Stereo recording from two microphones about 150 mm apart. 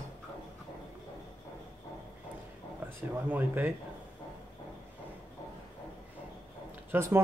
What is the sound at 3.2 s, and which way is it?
Speech, 15° right (ahead or behind).